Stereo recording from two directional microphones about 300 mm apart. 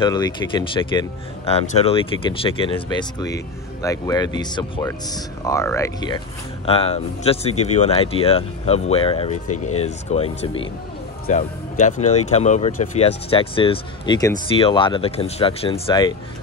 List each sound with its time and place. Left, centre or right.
0.0 s speech: centre